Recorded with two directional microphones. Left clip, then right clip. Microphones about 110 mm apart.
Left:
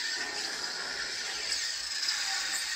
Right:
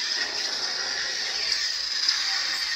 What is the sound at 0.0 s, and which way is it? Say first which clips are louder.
Music: right 6 dB; 20° left (ahead or behind).